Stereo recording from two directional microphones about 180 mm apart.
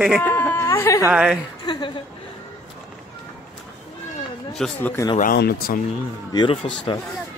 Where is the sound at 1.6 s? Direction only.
25° left (ahead or behind).